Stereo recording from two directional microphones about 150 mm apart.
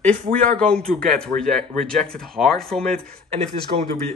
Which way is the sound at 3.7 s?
50° right (ahead or behind).